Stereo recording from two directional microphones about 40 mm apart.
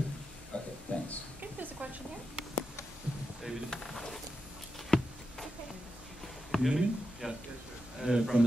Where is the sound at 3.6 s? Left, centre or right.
Centre.